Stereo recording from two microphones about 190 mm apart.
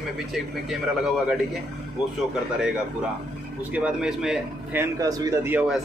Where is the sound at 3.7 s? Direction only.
5° right (ahead or behind).